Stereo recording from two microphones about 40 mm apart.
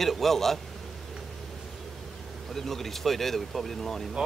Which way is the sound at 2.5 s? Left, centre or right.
Centre.